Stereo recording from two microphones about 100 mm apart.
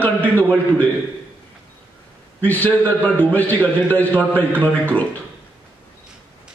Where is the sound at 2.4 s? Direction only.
15° left (ahead or behind).